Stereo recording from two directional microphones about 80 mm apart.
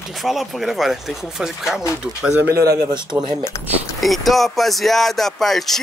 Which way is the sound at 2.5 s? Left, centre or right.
Right.